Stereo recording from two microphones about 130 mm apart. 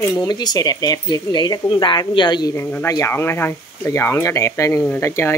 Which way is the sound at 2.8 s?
20° left (ahead or behind).